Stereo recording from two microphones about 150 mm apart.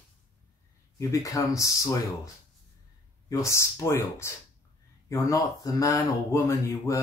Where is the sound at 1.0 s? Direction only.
20° left (ahead or behind).